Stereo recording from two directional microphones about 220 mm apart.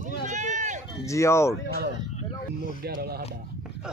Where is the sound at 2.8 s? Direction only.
45° right (ahead or behind).